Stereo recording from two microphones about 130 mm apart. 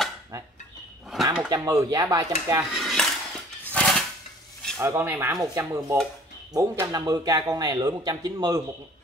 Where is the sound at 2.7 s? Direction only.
Centre (ahead or behind).